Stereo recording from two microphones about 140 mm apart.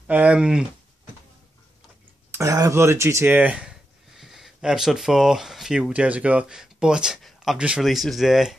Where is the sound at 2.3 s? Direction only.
20° right (ahead or behind).